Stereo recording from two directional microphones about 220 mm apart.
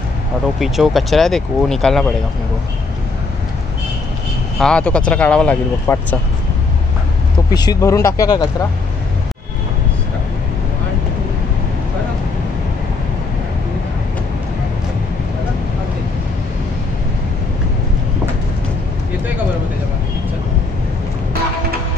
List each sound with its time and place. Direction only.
0.6 s speech: centre (ahead or behind)
4.6 s speech: 5° left (ahead or behind)
7.5 s speech: 20° left (ahead or behind)